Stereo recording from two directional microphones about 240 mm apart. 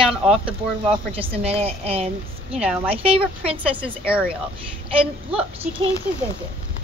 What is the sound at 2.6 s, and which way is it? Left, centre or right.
A woman's voice, centre.